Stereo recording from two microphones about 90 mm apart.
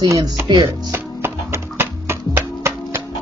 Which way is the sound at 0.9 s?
25° right (ahead or behind).